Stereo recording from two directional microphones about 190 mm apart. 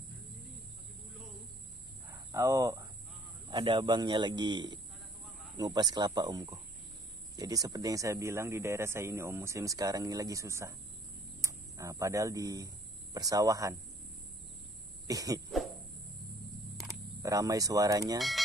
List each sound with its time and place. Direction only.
2.0 s a sound: 15° right (ahead or behind)
3.4 s a man's voice: 25° right (ahead or behind)
15.0 s a man's voice: 20° right (ahead or behind)
17.2 s a man's voice: 15° right (ahead or behind)